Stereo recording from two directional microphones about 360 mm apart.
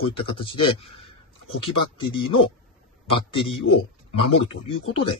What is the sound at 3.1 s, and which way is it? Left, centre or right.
A man's voice, centre.